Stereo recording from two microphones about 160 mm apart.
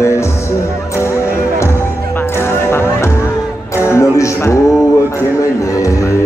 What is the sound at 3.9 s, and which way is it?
Music, 20° left (ahead or behind).